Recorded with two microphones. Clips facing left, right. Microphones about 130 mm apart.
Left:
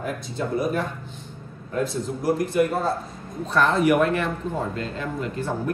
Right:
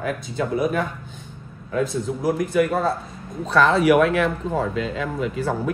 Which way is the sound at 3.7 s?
90° right.